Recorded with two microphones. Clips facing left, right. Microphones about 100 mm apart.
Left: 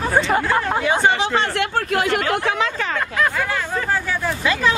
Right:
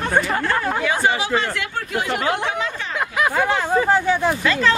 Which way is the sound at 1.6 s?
65° left (ahead or behind).